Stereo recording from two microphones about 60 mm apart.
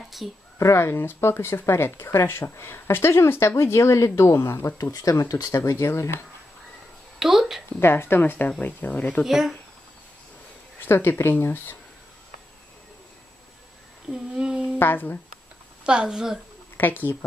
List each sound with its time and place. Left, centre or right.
0.2 s speech: centre
0.6 s speech: left
4.9 s speech: left
5.9 s speech: left
7.2 s a sound: centre
7.8 s a woman's voice: left
9.2 s speech: centre
10.9 s speech: left
14.1 s a sound: centre
14.8 s speech: left
15.8 s speech: centre
16.7 s speech: left